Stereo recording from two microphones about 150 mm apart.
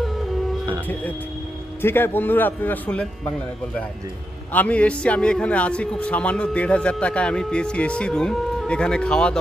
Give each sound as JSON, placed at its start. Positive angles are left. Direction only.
{"t": 1.8, "sound": "a man's voice", "side_deg": 15}
{"t": 4.5, "sound": "a man's voice", "side_deg": 10}